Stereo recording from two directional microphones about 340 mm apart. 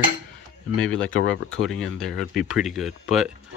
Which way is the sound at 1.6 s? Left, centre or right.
Centre.